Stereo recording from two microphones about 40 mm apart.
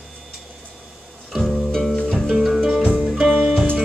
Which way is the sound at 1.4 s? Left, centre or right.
Centre.